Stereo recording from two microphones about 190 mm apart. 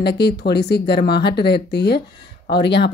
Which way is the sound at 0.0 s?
60° left (ahead or behind).